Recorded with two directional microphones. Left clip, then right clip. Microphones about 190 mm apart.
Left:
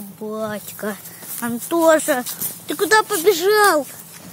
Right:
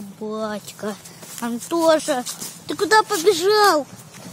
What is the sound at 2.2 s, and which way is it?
Speech, 30° left (ahead or behind).